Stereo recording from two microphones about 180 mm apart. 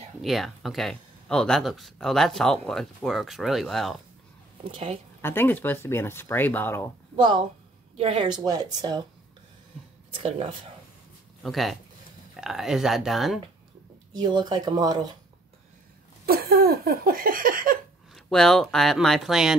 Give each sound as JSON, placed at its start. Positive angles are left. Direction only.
{"t": 0.2, "sound": "speech", "side_deg": 0}
{"t": 4.6, "sound": "a woman's voice", "side_deg": -30}
{"t": 5.2, "sound": "speech", "side_deg": 10}
{"t": 7.2, "sound": "speech", "side_deg": -25}
{"t": 10.1, "sound": "speech", "side_deg": -30}
{"t": 11.4, "sound": "speech", "side_deg": 0}
{"t": 14.1, "sound": "speech", "side_deg": -25}
{"t": 16.3, "sound": "a sound", "side_deg": -60}
{"t": 18.1, "sound": "speech", "side_deg": 0}